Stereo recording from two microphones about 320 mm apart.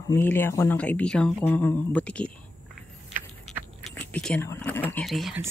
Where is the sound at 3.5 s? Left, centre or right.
Centre.